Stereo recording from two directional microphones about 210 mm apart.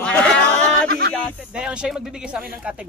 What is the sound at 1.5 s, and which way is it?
Speech, 5° right (ahead or behind).